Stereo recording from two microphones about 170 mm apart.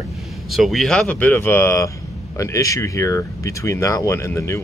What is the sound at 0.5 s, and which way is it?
Speech, centre (ahead or behind).